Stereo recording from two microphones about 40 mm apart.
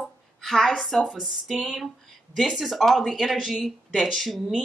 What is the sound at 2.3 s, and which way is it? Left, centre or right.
Speech, centre.